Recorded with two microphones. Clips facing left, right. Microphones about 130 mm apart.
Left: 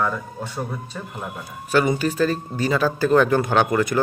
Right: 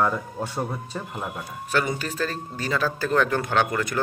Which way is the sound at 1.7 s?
10° left (ahead or behind).